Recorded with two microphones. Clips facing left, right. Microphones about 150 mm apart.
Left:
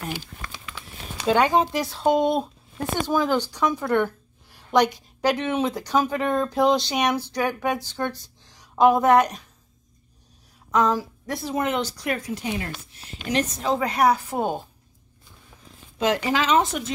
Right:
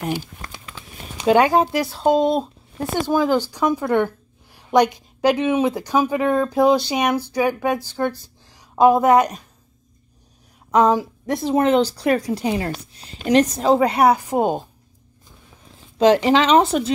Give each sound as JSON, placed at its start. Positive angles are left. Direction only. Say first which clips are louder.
{"t": 0.7, "sound": "speech", "louder": "right 1 dB", "side_deg": -15}
{"t": 10.7, "sound": "a sound", "louder": "right 5 dB", "side_deg": -20}
{"t": 11.2, "sound": "speech", "louder": "right 8 dB", "side_deg": -25}
{"t": 13.8, "sound": "speech", "louder": "right 4 dB", "side_deg": -25}
{"t": 14.3, "sound": "speech", "louder": "right 6 dB", "side_deg": -15}
{"t": 16.2, "sound": "speech", "louder": "right 6 dB", "side_deg": -25}